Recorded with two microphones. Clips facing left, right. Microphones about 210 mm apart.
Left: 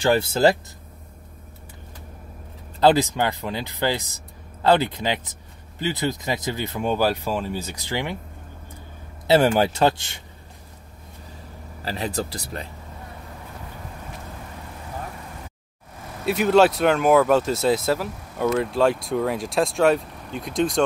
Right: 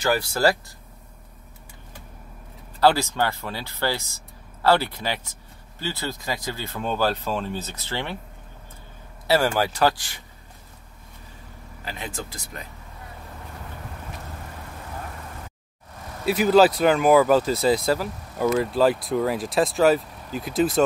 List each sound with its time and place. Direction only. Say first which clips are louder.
0.0 s speech: left 3 dB; 25° left (ahead or behind)
2.8 s speech: left 2 dB; 20° left (ahead or behind)
9.3 s speech: left 4 dB; 20° left (ahead or behind)
11.8 s speech: left 7 dB; 35° left (ahead or behind)
16.3 s speech: even; centre (ahead or behind)